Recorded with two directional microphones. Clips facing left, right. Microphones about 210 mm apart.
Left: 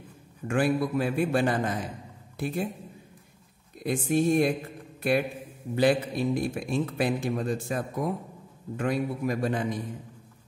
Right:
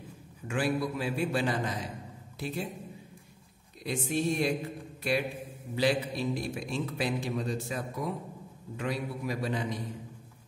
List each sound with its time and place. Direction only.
0.5 s a man's voice: 55° left (ahead or behind)
3.8 s a man's voice: 50° left (ahead or behind)